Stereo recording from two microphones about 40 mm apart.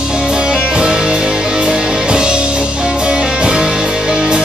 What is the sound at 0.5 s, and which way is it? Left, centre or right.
Music, right.